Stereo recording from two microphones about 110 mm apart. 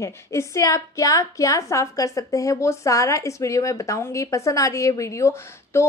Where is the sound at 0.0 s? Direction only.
25° left (ahead or behind).